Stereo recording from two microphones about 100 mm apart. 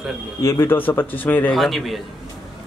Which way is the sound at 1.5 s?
Centre (ahead or behind).